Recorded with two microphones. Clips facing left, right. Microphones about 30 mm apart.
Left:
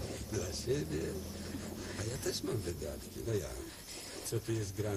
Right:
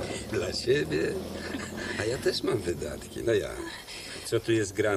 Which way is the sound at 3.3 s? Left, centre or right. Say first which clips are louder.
Right 12 dB; right.